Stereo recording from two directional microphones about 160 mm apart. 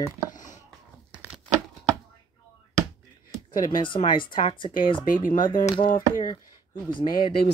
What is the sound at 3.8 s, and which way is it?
Speech, 30° left (ahead or behind).